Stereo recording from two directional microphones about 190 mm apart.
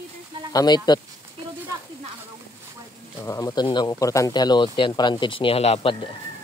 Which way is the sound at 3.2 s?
20° left (ahead or behind).